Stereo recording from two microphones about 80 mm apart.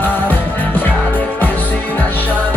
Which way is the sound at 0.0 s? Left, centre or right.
Left.